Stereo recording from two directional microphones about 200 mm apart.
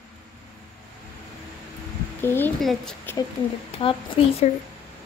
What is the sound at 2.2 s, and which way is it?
Speech, 10° left (ahead or behind).